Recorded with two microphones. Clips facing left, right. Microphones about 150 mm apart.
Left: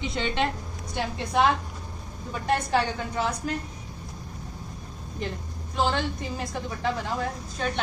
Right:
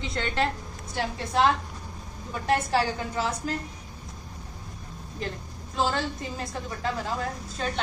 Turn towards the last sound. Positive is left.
turn(degrees=0)  # may be behind; listen again after turning